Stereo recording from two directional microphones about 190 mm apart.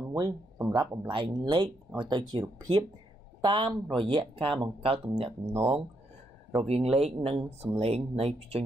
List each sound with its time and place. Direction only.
0.0 s speech: 15° right (ahead or behind)
6.6 s speech: 30° right (ahead or behind)